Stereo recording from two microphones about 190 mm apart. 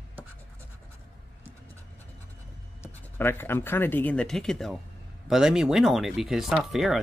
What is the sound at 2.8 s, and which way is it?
Speech, 10° left (ahead or behind).